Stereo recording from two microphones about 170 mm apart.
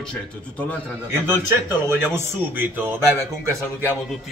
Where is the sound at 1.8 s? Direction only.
15° right (ahead or behind).